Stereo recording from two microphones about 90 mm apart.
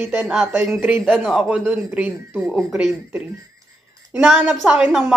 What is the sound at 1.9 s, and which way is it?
Speech, 20° right (ahead or behind).